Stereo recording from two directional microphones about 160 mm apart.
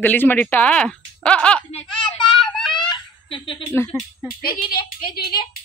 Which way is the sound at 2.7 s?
30° left (ahead or behind).